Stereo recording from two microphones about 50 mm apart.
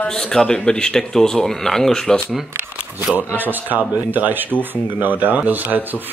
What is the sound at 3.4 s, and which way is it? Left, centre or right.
Speech, right.